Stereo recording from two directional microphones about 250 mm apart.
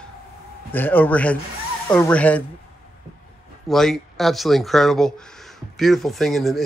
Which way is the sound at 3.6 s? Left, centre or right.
Centre.